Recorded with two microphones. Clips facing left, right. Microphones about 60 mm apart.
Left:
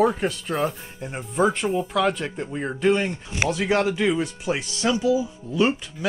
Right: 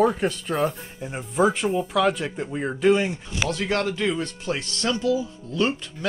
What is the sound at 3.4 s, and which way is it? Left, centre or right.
Speech, centre.